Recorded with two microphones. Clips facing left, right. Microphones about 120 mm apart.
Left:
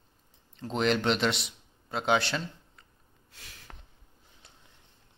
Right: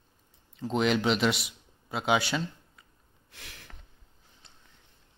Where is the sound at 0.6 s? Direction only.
5° right (ahead or behind).